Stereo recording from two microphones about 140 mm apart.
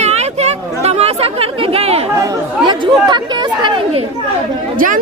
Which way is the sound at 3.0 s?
35° right (ahead or behind).